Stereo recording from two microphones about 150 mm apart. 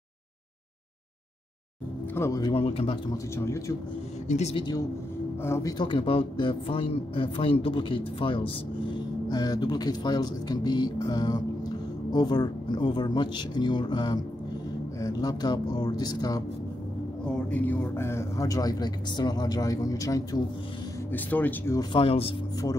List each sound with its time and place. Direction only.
2.1 s speech: 20° left (ahead or behind)
2.5 s a man's voice: 40° left (ahead or behind)
3.1 s speech: 20° left (ahead or behind)
4.3 s speech: 45° left (ahead or behind)
5.4 s a man's voice: 20° left (ahead or behind)
17.5 s speech: 10° left (ahead or behind)
21.1 s speech: 10° left (ahead or behind)
21.9 s a man's voice: 40° left (ahead or behind)